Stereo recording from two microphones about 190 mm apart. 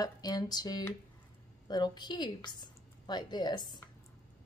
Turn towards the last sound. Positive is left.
turn(degrees=25)  # may be behind; listen again after turning